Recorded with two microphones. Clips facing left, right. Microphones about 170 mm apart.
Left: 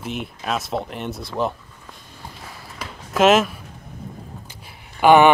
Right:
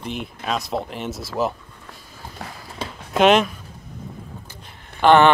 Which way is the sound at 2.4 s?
70° right (ahead or behind).